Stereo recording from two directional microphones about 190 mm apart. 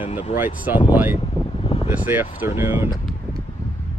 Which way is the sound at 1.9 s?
10° right (ahead or behind).